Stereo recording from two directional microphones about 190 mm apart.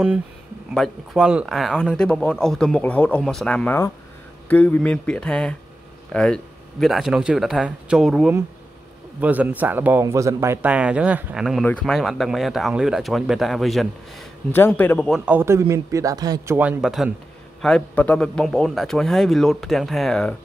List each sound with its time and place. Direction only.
0.7 s a man's voice: centre (ahead or behind); by 16.5 s 20° right (ahead or behind)
16.5 s speech: 5° right (ahead or behind)